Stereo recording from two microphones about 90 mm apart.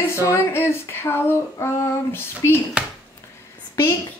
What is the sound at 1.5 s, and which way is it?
Female singing, 35° left (ahead or behind).